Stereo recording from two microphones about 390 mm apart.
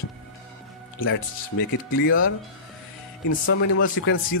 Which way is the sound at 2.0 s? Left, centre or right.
Left.